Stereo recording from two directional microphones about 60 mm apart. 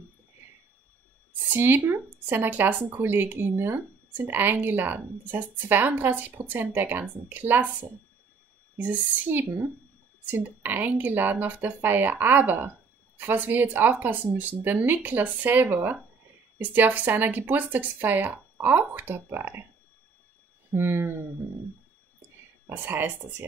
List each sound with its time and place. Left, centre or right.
1.5 s speech: right
8.7 s speech: right
20.7 s speech: right
22.7 s speech: right